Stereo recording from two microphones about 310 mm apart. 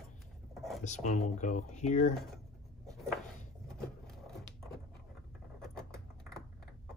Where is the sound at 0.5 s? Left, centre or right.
Centre.